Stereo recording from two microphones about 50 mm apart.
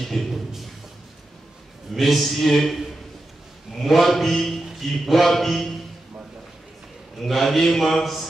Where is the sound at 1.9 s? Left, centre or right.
Centre.